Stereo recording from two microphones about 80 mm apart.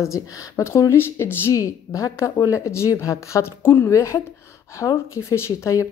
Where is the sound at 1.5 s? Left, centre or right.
Left.